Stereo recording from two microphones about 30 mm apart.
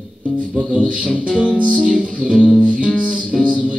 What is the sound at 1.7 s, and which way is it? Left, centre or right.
Music, right.